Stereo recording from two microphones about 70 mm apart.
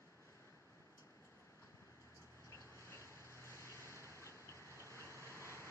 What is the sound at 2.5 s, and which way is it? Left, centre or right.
Vehicle, left.